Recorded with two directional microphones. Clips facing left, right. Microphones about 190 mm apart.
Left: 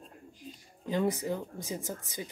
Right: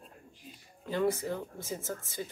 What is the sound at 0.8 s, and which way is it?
Speech, 15° left (ahead or behind).